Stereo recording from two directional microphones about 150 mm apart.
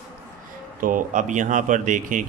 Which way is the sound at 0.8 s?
65° right (ahead or behind).